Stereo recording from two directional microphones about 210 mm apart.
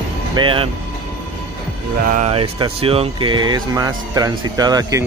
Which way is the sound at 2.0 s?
40° right (ahead or behind).